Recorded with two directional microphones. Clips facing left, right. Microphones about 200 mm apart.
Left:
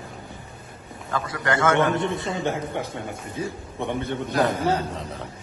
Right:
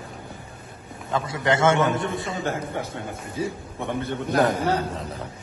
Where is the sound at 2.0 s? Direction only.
Centre (ahead or behind).